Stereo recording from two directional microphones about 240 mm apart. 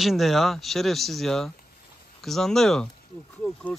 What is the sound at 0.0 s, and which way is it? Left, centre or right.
Speech, centre.